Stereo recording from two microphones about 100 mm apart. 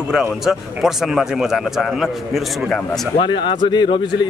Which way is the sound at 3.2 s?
50° left (ahead or behind).